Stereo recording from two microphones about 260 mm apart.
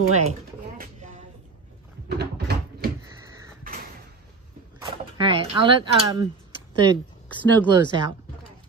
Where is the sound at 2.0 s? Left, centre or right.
Right.